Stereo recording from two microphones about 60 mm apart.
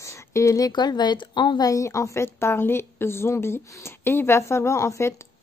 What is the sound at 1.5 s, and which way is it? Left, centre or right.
Speech, left.